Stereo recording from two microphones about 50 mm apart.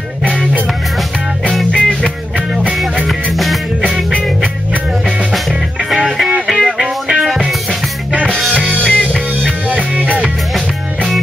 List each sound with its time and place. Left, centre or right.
1.7 s music: centre
3.3 s music: centre
5.9 s music: centre
8.5 s music: right
8.8 s music: centre
10.0 s music: right